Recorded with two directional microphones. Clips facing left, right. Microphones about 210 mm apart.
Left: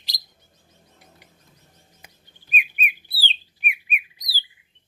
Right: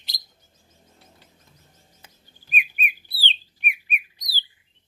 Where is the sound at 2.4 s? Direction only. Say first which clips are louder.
Left 1 dB; 40° right (ahead or behind).